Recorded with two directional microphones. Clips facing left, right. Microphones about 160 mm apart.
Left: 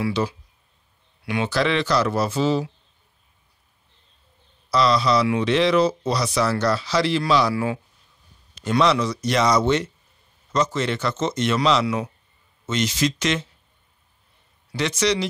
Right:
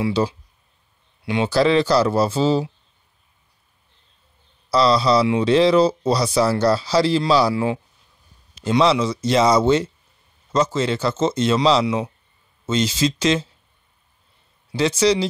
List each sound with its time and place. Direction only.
0.0 s speech: 25° right (ahead or behind)
4.6 s speech: 30° right (ahead or behind)
14.7 s speech: 30° right (ahead or behind)